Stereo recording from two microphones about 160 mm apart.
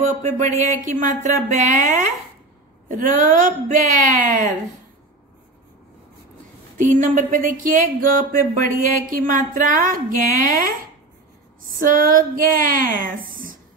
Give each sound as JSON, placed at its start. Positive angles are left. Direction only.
{"t": 0.2, "sound": "speech", "side_deg": -50}
{"t": 6.9, "sound": "speech", "side_deg": -50}
{"t": 12.0, "sound": "speech", "side_deg": -60}